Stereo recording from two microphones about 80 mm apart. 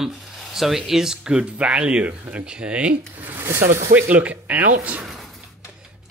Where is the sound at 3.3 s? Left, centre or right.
Right.